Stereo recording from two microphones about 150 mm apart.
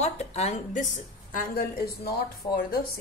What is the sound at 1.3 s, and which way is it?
Speech, 90° left.